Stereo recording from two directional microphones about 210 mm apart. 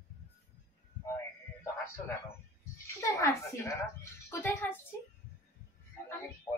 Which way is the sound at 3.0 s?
15° left (ahead or behind).